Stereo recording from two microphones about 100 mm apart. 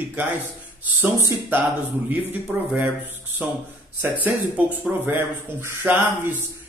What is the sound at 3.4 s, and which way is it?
Speech, 15° right (ahead or behind).